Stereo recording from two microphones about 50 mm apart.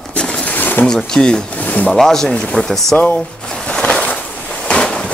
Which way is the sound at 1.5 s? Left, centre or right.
Left.